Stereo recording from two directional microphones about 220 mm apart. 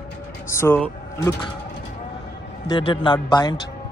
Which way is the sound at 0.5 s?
10° left (ahead or behind).